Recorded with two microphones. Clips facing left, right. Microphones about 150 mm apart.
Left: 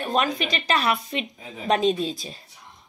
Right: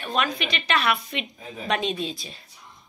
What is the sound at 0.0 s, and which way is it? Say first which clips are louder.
A woman's voice: left 3 dB; 40° left (ahead or behind).